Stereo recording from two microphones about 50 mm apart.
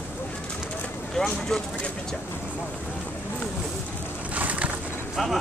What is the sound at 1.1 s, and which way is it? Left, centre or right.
Speech, centre.